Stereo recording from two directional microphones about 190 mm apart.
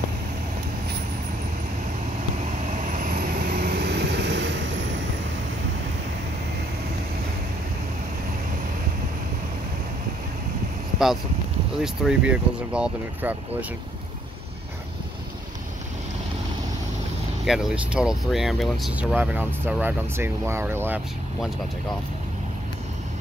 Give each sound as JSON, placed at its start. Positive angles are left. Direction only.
{"t": 2.9, "sound": "vehicle", "side_deg": -45}
{"t": 11.8, "sound": "speech", "side_deg": -5}
{"t": 17.5, "sound": "speech", "side_deg": -5}